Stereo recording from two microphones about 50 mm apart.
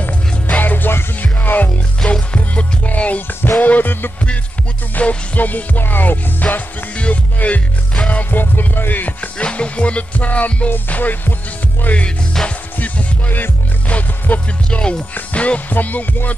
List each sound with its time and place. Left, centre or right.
0.6 s music: left
2.0 s music: left
4.9 s music: left
7.0 s music: left
9.4 s music: left
12.4 s speech: centre
12.7 s music: left
14.8 s speech: centre
15.3 s music: left
15.7 s music: left